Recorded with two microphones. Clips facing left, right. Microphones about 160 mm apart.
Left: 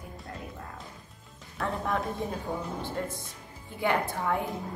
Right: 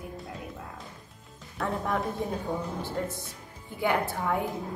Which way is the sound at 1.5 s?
Centre (ahead or behind).